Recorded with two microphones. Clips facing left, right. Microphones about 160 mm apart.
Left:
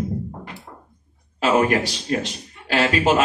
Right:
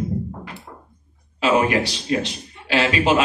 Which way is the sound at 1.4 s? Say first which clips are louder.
Even; 45° left (ahead or behind).